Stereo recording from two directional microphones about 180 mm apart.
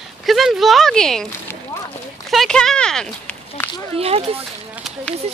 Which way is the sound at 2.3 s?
Centre (ahead or behind).